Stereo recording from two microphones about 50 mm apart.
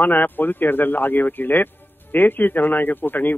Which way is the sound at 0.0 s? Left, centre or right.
Left.